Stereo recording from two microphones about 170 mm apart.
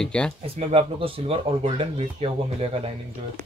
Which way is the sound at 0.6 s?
35° right (ahead or behind).